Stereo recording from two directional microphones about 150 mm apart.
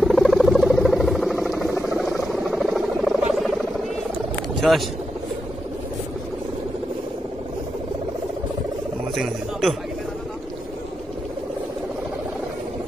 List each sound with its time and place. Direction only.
0.0 s mouse: centre (ahead or behind)
4.6 s speech: centre (ahead or behind)
9.1 s frog: centre (ahead or behind)